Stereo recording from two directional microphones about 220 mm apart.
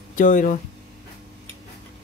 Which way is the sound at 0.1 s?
35° left (ahead or behind).